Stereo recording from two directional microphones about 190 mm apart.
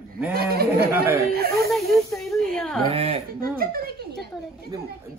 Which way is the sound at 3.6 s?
50° right (ahead or behind).